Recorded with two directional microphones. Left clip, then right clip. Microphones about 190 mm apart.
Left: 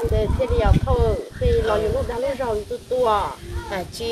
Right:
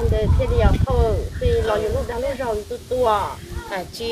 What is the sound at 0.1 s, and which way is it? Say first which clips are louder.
Speech: even; 15° left (ahead or behind).